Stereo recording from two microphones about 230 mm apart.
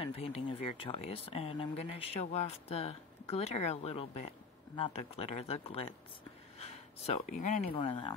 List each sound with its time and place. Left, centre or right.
0.0 s speech: left